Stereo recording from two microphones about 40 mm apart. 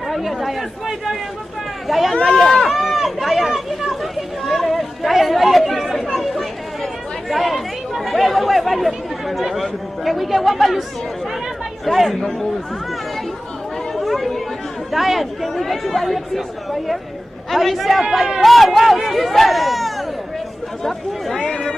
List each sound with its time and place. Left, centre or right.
0.1 s speech: centre
6.1 s chatter: centre
11.8 s speech: centre
12.2 s speech: centre
13.9 s chatter: centre
14.9 s a man's voice: centre
21.4 s run: centre